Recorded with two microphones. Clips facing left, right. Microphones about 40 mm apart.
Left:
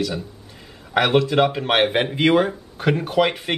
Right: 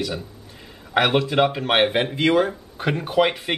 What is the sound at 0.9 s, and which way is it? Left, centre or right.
Speech, centre.